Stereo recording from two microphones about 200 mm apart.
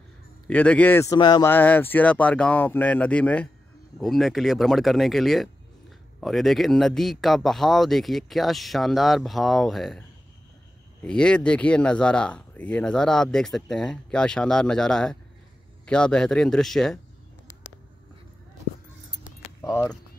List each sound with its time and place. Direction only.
0.5 s speech: 5° left (ahead or behind)
19.6 s speech: 15° left (ahead or behind)